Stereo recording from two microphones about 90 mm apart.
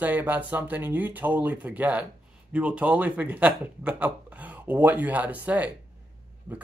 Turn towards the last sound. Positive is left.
turn(degrees=-20)  # may be behind; listen again after turning